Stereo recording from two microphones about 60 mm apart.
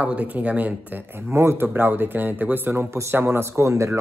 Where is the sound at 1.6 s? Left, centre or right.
Right.